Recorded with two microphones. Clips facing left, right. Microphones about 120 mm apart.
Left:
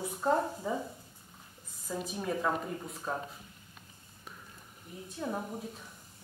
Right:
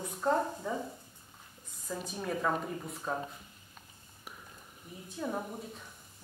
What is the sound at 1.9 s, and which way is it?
A woman's voice, 5° left (ahead or behind).